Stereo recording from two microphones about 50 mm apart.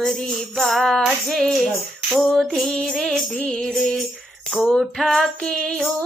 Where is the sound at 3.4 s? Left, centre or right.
Centre.